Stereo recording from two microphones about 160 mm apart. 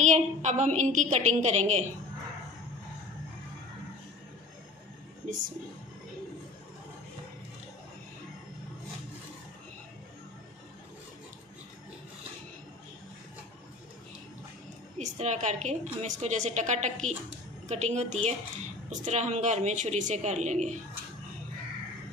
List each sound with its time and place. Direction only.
0.0 s a woman's voice: 45° right (ahead or behind)
15.0 s a woman's voice: 45° right (ahead or behind)